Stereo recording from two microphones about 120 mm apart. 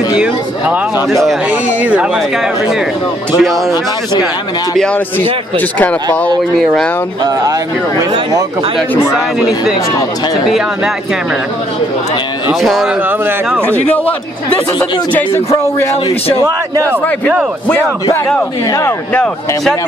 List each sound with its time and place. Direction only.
1.5 s speech: 10° right (ahead or behind)
3.3 s speech: centre (ahead or behind)
4.7 s speech: 5° left (ahead or behind)
8.9 s a man's voice: 20° left (ahead or behind)
12.6 s speech: centre (ahead or behind)
13.7 s speech: 10° left (ahead or behind)
15.5 s a man's voice: 25° left (ahead or behind)
16.3 s a man's voice: 30° right (ahead or behind)
18.7 s a man's voice: 25° left (ahead or behind)